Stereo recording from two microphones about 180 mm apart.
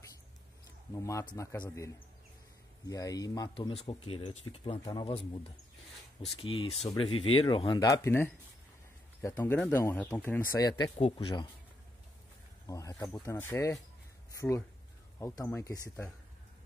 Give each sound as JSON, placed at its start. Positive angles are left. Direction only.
{"t": 0.9, "sound": "speech", "side_deg": 15}
{"t": 2.9, "sound": "speech", "side_deg": 20}
{"t": 6.2, "sound": "speech", "side_deg": 30}
{"t": 12.6, "sound": "speech", "side_deg": 20}
{"t": 15.1, "sound": "speech", "side_deg": 15}